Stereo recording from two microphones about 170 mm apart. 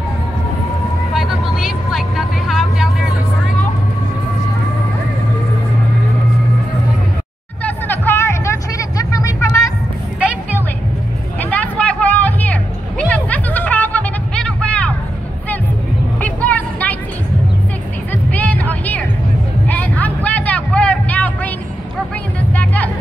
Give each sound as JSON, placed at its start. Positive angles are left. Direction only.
{"t": 1.1, "sound": "vehicle", "side_deg": 0}
{"t": 7.6, "sound": "a sound", "side_deg": 10}
{"t": 11.3, "sound": "music", "side_deg": 10}
{"t": 16.2, "sound": "music", "side_deg": 10}
{"t": 18.3, "sound": "music", "side_deg": 10}
{"t": 19.7, "sound": "a sound", "side_deg": 10}